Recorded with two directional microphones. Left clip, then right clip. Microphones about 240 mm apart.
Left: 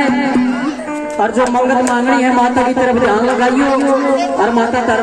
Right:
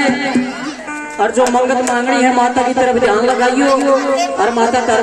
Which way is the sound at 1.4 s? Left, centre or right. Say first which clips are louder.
Even; right.